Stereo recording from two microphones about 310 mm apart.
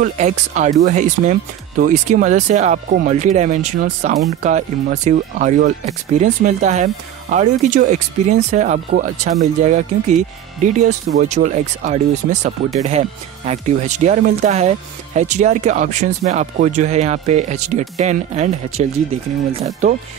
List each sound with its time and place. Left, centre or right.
0.0 s speech: right